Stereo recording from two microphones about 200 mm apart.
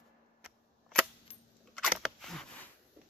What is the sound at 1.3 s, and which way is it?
Coin, 30° left (ahead or behind).